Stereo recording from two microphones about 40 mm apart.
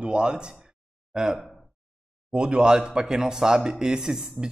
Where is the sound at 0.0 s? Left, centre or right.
Right.